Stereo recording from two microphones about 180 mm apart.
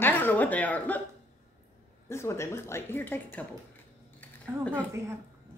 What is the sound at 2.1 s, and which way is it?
Speech, 15° left (ahead or behind).